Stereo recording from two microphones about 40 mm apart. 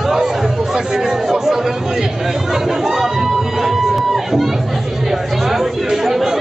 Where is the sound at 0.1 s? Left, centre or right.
Centre.